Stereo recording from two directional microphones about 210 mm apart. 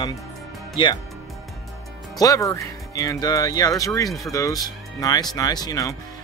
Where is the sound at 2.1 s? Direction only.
15° left (ahead or behind).